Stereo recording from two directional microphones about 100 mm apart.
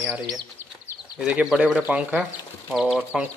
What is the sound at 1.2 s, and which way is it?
Speech, 5° right (ahead or behind).